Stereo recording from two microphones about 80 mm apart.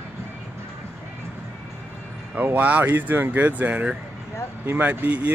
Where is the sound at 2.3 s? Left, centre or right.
Right.